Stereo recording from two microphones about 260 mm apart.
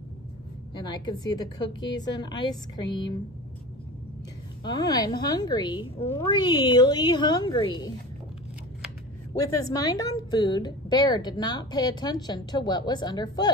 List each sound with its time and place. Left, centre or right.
0.8 s a woman's voice: centre
4.6 s a woman's voice: centre
9.7 s a woman's voice: centre